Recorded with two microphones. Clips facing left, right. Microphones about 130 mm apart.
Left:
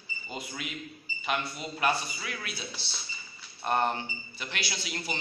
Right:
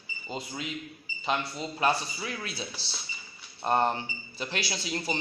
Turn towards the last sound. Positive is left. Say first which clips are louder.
# right 4 dB
turn(degrees=-35)  # may be behind; listen again after turning